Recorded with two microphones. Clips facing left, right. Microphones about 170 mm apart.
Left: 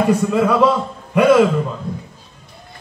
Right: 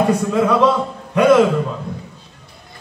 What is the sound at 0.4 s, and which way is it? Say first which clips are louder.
Speech: right 1 dB; 5° left (ahead or behind).